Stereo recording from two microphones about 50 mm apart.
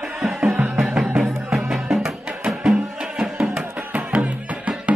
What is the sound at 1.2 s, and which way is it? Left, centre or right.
Music, centre.